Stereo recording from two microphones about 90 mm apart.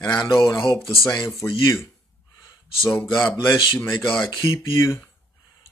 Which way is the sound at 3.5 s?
55° left (ahead or behind).